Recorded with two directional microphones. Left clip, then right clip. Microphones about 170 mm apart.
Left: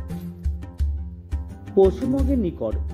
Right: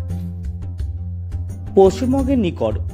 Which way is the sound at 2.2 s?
25° right (ahead or behind).